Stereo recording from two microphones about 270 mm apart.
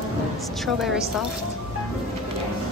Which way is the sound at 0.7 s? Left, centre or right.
Centre.